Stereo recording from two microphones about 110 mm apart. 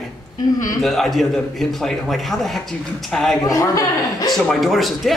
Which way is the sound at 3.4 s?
30° left (ahead or behind).